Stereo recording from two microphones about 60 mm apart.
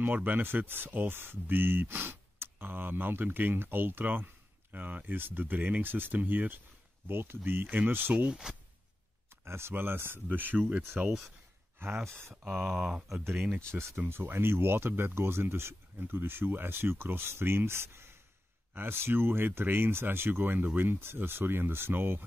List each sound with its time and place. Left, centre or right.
0.0 s speech: right
7.6 s speech: right
9.5 s speech: right
11.1 s speech: centre
11.8 s speech: right
12.4 s speech: centre
12.7 s speech: centre
13.9 s speech: right